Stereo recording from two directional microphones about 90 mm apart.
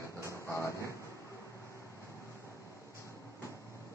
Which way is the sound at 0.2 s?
35° left (ahead or behind).